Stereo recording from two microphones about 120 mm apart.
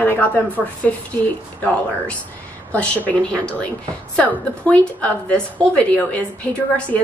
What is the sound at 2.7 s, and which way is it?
A woman's voice, 10° left (ahead or behind).